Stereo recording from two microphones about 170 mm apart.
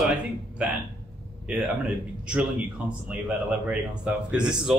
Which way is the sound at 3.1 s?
10° right (ahead or behind).